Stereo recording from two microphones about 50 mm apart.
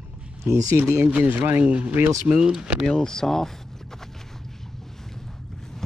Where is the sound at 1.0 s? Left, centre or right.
Right.